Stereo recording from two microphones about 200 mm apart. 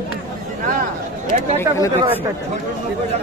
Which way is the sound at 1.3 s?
40° right (ahead or behind).